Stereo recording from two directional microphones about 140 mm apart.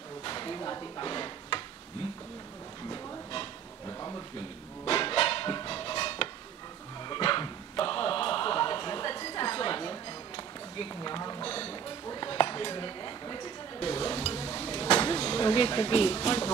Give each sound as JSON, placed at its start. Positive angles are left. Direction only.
{"t": 0.2, "sound": "a sound", "side_deg": 35}
{"t": 4.8, "sound": "music", "side_deg": 40}
{"t": 7.1, "sound": "dog", "side_deg": 35}
{"t": 9.2, "sound": "a sound", "side_deg": 35}
{"t": 11.4, "sound": "music", "side_deg": 40}
{"t": 12.1, "sound": "dishes", "side_deg": 35}